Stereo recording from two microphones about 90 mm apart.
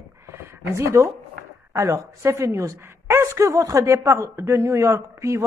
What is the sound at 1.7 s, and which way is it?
A woman's voice, 35° right (ahead or behind).